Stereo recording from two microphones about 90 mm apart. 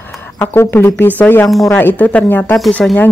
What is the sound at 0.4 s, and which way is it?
A woman's voice, 25° left (ahead or behind).